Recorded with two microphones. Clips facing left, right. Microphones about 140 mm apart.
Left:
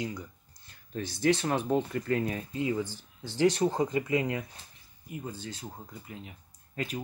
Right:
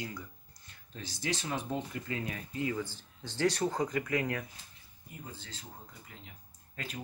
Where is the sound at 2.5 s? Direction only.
20° left (ahead or behind).